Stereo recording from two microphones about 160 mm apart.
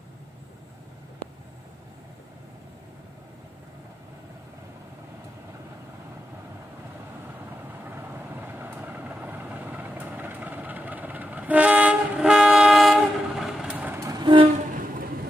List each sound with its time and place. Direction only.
7.8 s vehicle: 10° right (ahead or behind); by 14.5 s 30° right (ahead or behind)
14.7 s music: 60° right (ahead or behind)